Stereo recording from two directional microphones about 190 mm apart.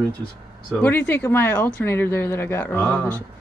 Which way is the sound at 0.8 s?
10° left (ahead or behind).